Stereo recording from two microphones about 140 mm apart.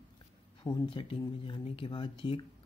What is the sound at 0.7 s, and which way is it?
Speech, 40° left (ahead or behind).